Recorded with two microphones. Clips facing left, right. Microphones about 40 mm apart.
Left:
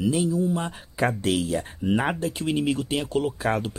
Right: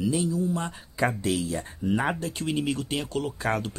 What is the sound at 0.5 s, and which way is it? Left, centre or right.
Speech, centre.